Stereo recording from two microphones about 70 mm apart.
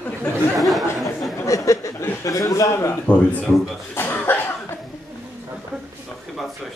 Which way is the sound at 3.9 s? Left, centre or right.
Left.